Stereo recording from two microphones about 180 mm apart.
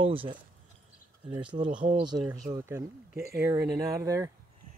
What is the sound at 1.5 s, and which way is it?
Speech, 25° right (ahead or behind).